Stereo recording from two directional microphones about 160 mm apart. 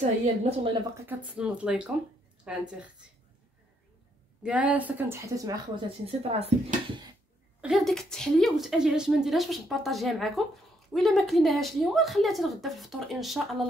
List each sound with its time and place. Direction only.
0.0 s a woman's voice: 40° right (ahead or behind)
0.9 s a woman's voice: 10° right (ahead or behind)
4.4 s a woman's voice: 10° right (ahead or behind)
5.9 s speech: 40° right (ahead or behind)
7.6 s a woman's voice: centre (ahead or behind)